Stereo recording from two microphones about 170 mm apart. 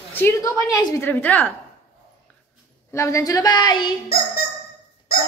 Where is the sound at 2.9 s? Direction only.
15° left (ahead or behind).